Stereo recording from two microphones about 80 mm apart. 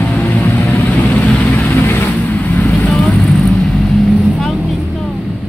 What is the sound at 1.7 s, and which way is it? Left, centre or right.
Vehicle, left.